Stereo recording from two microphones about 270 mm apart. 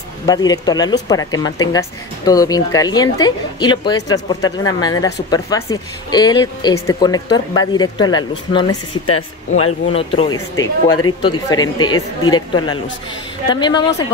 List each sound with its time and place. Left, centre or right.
0.3 s speech: centre
9.0 s speech: left
9.9 s speech: centre